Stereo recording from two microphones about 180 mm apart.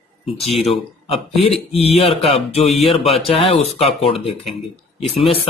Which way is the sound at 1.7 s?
35° left (ahead or behind).